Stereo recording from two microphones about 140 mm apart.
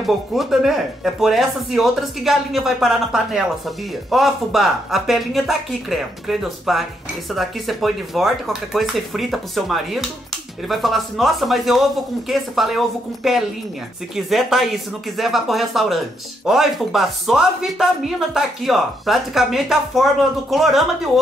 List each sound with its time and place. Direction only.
0.0 s speech: centre (ahead or behind)